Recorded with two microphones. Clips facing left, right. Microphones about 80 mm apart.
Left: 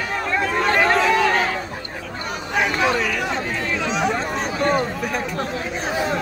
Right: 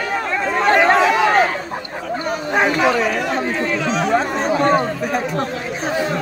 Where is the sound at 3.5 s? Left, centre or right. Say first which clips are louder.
Right 4 dB; centre.